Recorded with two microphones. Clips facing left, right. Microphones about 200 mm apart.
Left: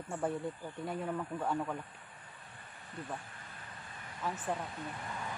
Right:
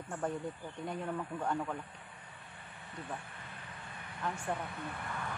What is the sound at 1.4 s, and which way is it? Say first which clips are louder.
Speech: even; 5° left (ahead or behind).